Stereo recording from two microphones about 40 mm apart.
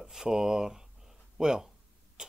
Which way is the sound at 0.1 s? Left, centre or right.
Centre.